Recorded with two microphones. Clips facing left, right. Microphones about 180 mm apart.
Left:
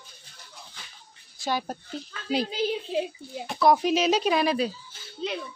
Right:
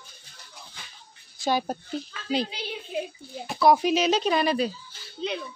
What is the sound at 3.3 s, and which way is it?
Speech, centre (ahead or behind).